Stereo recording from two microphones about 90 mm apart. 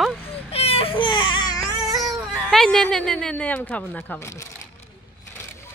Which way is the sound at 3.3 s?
15° left (ahead or behind).